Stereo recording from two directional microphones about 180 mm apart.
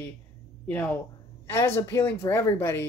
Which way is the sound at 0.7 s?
10° left (ahead or behind).